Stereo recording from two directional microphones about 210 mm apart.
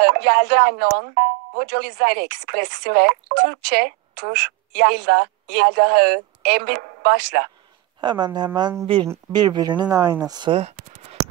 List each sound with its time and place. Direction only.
0.0 s speech: 50° right (ahead or behind)
8.0 s speech: 20° right (ahead or behind)